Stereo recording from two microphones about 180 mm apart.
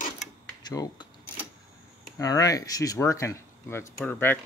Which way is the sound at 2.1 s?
20° left (ahead or behind).